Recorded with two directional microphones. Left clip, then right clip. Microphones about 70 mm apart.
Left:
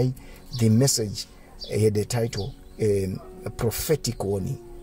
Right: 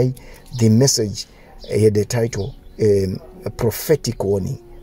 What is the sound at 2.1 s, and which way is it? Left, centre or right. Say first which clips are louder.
Speech: right 6 dB; right.